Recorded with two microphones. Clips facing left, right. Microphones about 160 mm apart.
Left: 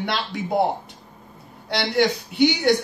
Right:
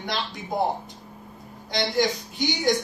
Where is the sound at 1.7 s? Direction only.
65° left (ahead or behind).